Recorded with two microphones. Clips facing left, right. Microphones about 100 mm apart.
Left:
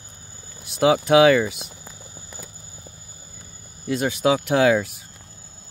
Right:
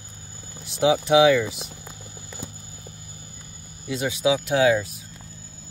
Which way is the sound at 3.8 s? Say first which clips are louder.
Left 3 dB; 55° left (ahead or behind).